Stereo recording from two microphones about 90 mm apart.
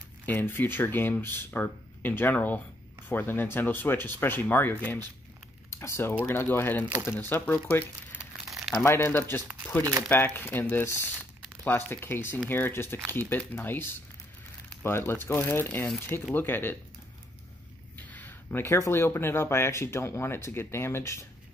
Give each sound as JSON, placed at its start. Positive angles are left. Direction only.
{"t": 0.3, "sound": "speech", "side_deg": 20}
{"t": 8.5, "sound": "crumpling", "side_deg": -5}
{"t": 8.8, "sound": "speech", "side_deg": 30}
{"t": 15.6, "sound": "speech", "side_deg": 15}
{"t": 17.9, "sound": "speech", "side_deg": 20}